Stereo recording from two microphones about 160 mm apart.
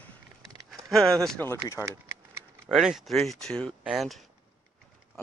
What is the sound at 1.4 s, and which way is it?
Speech, 15° left (ahead or behind).